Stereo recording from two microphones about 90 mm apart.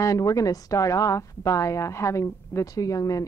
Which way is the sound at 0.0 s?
40° left (ahead or behind).